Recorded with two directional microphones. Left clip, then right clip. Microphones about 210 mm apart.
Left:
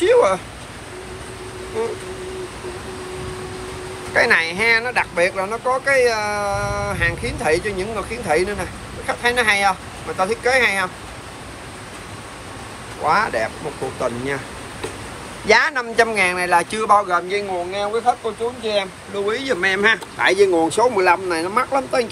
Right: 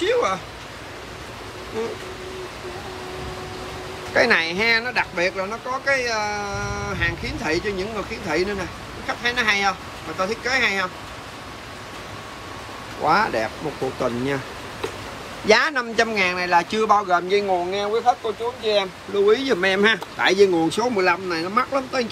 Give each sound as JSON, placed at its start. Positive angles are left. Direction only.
{"t": 0.0, "sound": "a sound", "side_deg": -5}
{"t": 4.1, "sound": "speech", "side_deg": -20}
{"t": 13.0, "sound": "speech", "side_deg": -20}
{"t": 15.4, "sound": "speech", "side_deg": -20}